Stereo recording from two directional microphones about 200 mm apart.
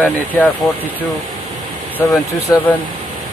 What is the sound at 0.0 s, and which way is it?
Speech, 5° left (ahead or behind).